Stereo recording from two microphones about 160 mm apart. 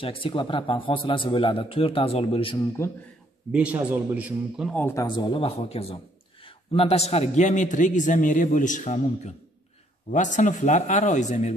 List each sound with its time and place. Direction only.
0.0 s a man's voice: 35° left (ahead or behind)
2.8 s speech: 15° left (ahead or behind)
3.5 s a man's voice: 10° right (ahead or behind)
4.6 s speech: 10° left (ahead or behind)
5.0 s a man's voice: 30° left (ahead or behind); by 11.5 s 45° left (ahead or behind)